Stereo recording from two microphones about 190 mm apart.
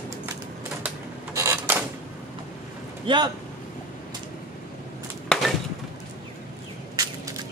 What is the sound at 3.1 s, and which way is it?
Speech, 25° right (ahead or behind).